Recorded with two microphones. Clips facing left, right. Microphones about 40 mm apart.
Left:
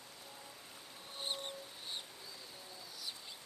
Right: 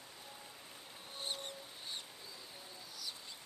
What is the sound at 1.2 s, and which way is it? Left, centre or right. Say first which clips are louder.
Music: left 1 dB; centre.